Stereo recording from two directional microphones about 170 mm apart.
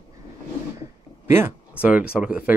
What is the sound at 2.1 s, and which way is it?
Speech, 5° right (ahead or behind).